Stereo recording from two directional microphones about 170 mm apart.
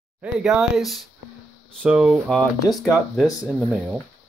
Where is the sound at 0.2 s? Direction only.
Centre (ahead or behind).